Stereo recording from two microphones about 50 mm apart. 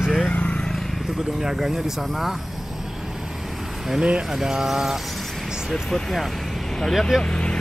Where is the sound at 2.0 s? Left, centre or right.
Centre.